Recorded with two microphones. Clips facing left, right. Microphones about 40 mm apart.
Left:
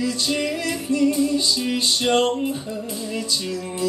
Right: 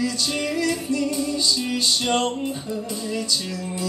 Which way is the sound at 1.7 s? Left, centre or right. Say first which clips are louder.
Left 4 dB; centre.